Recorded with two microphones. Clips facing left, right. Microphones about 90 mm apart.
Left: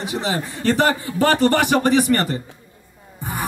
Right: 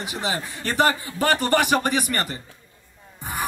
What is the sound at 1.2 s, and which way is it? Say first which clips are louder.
Music: left 4 dB; 15° right (ahead or behind).